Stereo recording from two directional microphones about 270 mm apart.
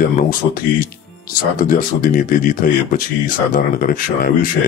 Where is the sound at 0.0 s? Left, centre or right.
Left.